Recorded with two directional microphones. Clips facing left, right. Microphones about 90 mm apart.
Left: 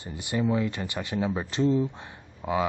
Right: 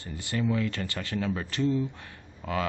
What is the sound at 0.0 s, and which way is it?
Speech, 20° left (ahead or behind).